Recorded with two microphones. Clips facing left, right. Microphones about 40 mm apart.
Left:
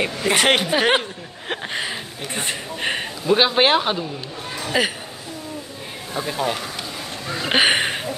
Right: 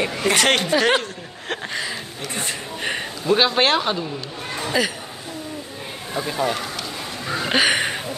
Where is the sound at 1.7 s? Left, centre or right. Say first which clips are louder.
Left 1 dB; left.